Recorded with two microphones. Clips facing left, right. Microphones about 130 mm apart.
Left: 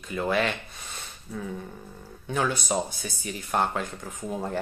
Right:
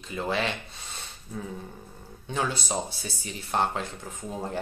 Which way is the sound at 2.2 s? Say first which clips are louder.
Left 3 dB; 25° right (ahead or behind).